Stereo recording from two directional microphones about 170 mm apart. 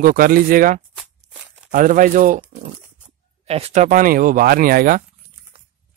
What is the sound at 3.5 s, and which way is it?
Speech, 35° right (ahead or behind).